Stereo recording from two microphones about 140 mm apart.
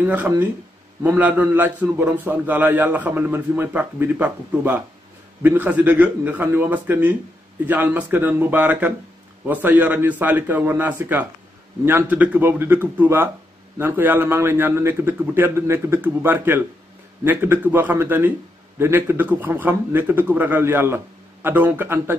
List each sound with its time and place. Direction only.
0.0 s a man's voice: 10° right (ahead or behind)